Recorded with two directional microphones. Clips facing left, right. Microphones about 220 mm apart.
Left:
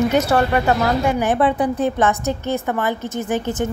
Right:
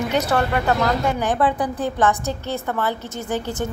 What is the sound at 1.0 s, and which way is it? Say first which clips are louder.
Speech: left 3 dB; 10° left (ahead or behind).